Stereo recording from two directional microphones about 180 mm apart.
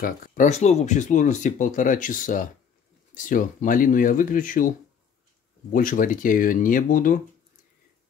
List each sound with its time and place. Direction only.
0.0 s speech: 50° left (ahead or behind)
5.7 s speech: 50° left (ahead or behind)